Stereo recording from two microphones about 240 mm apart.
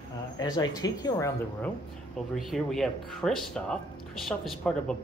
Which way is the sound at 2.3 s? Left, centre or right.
Centre.